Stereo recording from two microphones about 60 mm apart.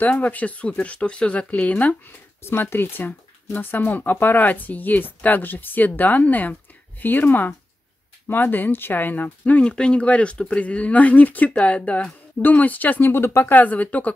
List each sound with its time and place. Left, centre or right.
0.0 s speech: left
2.4 s speech: left
13.6 s speech: left